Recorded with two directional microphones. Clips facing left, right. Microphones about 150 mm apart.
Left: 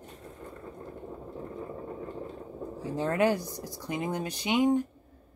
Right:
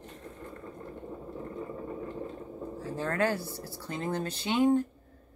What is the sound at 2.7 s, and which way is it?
Speech, 15° left (ahead or behind).